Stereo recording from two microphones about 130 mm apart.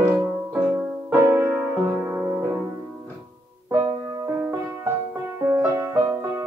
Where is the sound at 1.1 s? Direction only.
20° right (ahead or behind).